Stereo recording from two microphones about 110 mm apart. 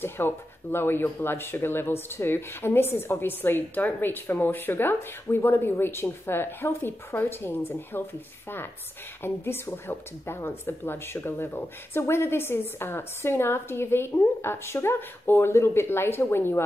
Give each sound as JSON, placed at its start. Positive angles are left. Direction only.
{"t": 0.0, "sound": "speech", "side_deg": 20}
{"t": 9.2, "sound": "speech", "side_deg": 20}